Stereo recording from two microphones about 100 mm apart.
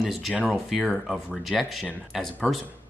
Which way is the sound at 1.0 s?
Centre (ahead or behind).